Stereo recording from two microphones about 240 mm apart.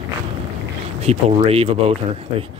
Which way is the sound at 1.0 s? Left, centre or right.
Right.